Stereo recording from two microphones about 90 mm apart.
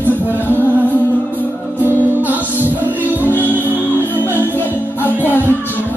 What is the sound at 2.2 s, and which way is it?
Music, 20° right (ahead or behind).